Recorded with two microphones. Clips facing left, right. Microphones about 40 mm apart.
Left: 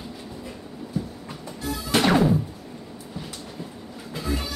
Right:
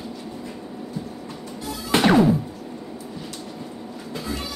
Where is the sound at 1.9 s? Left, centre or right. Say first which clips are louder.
Right 3 dB; centre.